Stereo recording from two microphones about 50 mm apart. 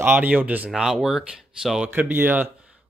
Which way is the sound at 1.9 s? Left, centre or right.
Right.